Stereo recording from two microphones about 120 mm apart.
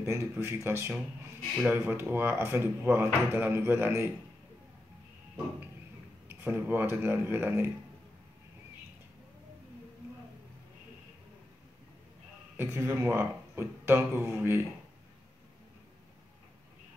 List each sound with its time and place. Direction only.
0.0 s speech: 20° right (ahead or behind)
6.2 s speech: 15° right (ahead or behind)
12.5 s speech: 20° right (ahead or behind)